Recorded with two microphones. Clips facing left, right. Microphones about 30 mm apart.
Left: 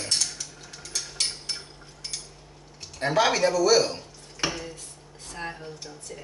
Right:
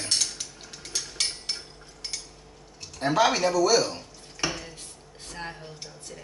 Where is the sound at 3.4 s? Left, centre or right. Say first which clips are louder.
Left 1 dB; left.